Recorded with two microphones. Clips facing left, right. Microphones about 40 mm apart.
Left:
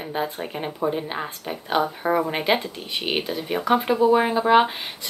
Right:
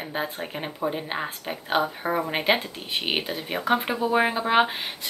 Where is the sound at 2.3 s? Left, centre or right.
Centre.